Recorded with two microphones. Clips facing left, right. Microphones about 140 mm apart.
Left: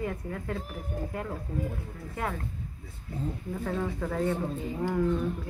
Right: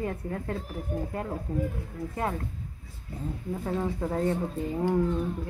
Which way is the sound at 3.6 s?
25° right (ahead or behind).